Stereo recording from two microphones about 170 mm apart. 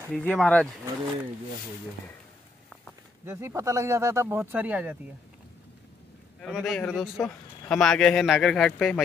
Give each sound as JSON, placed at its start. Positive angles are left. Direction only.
{"t": 0.1, "sound": "speech", "side_deg": 5}
{"t": 3.3, "sound": "speech", "side_deg": -15}
{"t": 6.4, "sound": "speech", "side_deg": 0}